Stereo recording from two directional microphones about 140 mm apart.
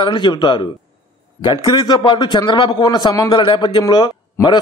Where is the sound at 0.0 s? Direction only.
35° left (ahead or behind).